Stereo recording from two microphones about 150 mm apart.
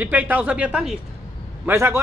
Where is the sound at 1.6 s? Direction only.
15° right (ahead or behind).